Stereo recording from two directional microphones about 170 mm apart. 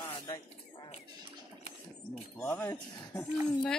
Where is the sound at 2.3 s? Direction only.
10° left (ahead or behind).